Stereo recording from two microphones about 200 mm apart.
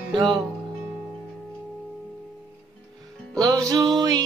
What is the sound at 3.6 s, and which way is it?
Music, 20° right (ahead or behind).